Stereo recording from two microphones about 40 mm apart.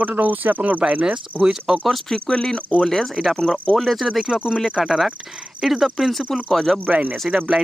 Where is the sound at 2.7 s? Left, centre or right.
Centre.